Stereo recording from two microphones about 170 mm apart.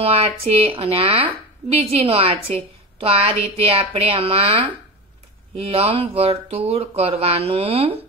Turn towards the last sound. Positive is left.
turn(degrees=-35)  # may be behind; listen again after turning